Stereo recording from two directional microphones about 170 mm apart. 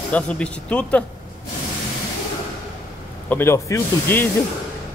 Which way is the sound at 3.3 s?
15° left (ahead or behind).